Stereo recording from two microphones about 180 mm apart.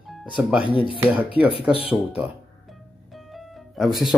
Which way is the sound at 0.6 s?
30° left (ahead or behind).